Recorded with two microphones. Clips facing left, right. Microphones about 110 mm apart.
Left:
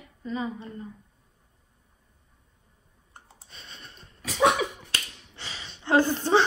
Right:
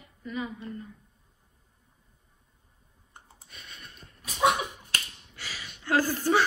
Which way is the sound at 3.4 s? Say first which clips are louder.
Left 1 dB; 30° left (ahead or behind).